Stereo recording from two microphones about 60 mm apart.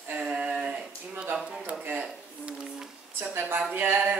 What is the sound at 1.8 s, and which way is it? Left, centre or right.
Speech, right.